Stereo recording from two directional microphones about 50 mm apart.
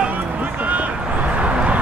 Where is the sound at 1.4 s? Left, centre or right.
Right.